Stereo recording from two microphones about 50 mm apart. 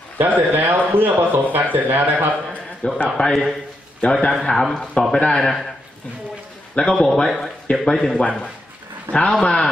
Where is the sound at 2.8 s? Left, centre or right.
Left.